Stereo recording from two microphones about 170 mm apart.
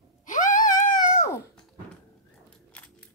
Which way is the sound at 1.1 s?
20° left (ahead or behind).